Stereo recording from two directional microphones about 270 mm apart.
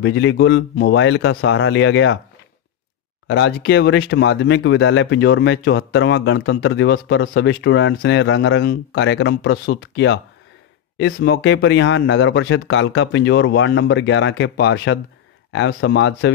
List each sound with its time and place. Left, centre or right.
0.0 s speech: left
3.3 s speech: left